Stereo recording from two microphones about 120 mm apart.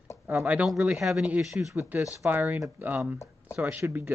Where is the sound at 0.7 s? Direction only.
5° right (ahead or behind).